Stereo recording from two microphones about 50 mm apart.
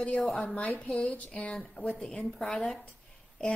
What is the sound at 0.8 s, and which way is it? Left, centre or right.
Speech, left.